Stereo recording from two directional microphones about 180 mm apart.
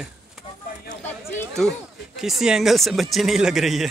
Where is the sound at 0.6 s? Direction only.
50° left (ahead or behind).